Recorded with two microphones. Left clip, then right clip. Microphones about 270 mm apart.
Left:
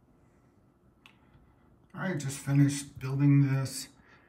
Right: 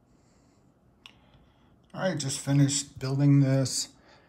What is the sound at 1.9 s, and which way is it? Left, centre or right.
Speech, centre.